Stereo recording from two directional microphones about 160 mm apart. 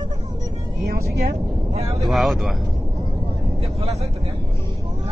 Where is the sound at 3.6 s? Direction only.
35° right (ahead or behind).